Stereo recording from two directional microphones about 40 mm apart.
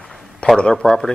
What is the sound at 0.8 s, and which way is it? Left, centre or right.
Speech, centre.